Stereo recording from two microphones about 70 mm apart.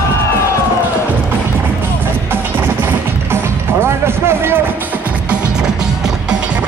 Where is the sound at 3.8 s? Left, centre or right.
Right.